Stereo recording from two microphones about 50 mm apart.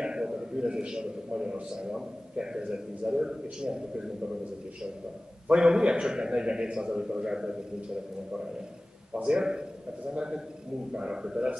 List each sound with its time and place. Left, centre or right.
0.0 s a man's voice: centre
5.5 s a man's voice: centre
9.1 s a man's voice: centre